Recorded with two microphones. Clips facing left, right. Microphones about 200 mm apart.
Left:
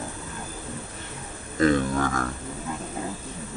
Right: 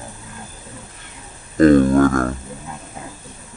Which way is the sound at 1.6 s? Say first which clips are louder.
Right 11 dB; 45° right (ahead or behind).